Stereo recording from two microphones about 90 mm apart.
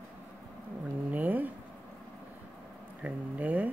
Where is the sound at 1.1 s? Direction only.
20° right (ahead or behind).